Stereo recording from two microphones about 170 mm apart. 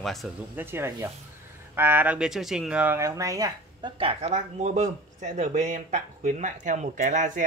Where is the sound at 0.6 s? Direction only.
15° right (ahead or behind).